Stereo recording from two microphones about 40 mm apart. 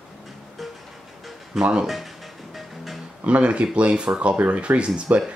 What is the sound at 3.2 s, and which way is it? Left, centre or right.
Speech, right.